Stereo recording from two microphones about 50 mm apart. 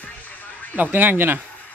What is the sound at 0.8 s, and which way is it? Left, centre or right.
Speech, right.